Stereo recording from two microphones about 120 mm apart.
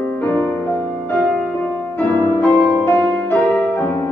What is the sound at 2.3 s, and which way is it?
Music, 20° left (ahead or behind).